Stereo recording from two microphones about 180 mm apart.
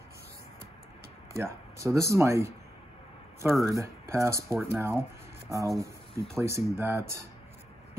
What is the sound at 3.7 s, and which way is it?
Speech, 15° right (ahead or behind).